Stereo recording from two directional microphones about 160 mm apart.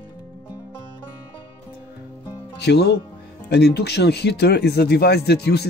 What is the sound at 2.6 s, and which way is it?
Speech, 90° left.